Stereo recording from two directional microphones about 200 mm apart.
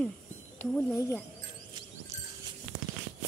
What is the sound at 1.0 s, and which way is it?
Speech, 15° left (ahead or behind).